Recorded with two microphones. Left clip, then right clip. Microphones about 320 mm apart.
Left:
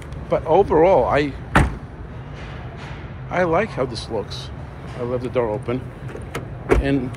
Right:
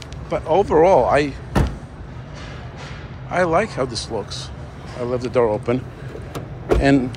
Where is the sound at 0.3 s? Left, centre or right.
Centre.